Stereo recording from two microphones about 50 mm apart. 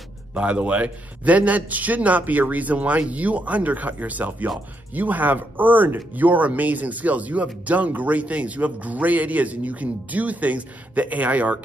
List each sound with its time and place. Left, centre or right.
0.3 s speech: right